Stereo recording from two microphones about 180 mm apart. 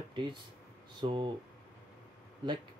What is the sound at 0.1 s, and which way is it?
Speech, 25° right (ahead or behind).